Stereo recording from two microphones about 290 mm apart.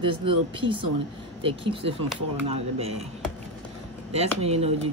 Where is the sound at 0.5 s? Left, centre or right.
Centre.